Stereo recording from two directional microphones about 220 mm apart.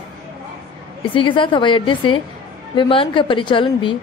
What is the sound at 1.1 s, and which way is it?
A woman's voice, 20° left (ahead or behind).